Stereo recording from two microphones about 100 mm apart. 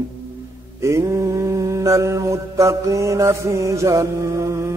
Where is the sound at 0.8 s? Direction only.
30° right (ahead or behind).